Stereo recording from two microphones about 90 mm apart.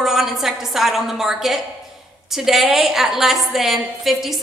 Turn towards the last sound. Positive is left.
turn(degrees=0)  # may be behind; listen again after turning